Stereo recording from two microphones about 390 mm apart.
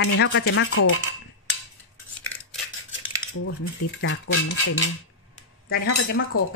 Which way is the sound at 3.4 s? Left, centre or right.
Left.